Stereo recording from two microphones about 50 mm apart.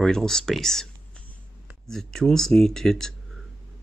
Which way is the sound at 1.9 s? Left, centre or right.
Centre.